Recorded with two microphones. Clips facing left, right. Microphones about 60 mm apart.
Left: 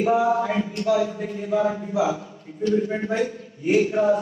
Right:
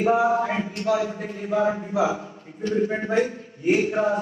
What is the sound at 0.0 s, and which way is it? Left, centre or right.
A man's voice, right.